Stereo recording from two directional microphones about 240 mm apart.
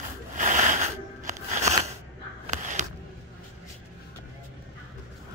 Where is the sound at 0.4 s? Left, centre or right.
Right.